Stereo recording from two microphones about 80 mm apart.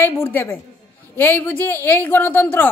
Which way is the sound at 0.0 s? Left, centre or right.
Left.